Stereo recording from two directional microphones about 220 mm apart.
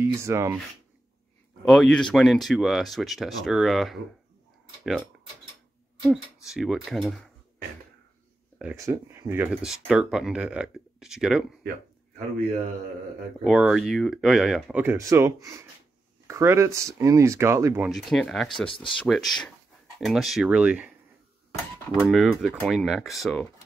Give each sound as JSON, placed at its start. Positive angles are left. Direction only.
{"t": 0.0, "sound": "speech", "side_deg": -10}
{"t": 1.7, "sound": "speech", "side_deg": 5}
{"t": 6.4, "sound": "speech", "side_deg": 0}
{"t": 8.5, "sound": "speech", "side_deg": -10}
{"t": 13.4, "sound": "speech", "side_deg": -5}
{"t": 17.8, "sound": "speech", "side_deg": 0}
{"t": 18.7, "sound": "speech", "side_deg": 25}
{"t": 18.9, "sound": "speech", "side_deg": 0}
{"t": 21.9, "sound": "speech", "side_deg": 0}